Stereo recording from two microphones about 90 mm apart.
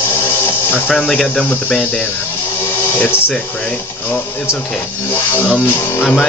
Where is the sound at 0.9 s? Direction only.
5° left (ahead or behind).